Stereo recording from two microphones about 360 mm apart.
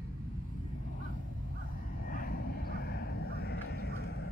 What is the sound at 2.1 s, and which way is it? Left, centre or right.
Vehicle, left.